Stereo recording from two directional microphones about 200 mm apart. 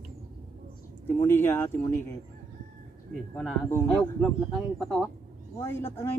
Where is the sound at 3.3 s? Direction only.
10° left (ahead or behind).